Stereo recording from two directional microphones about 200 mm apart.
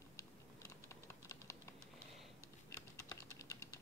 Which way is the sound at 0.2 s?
15° left (ahead or behind).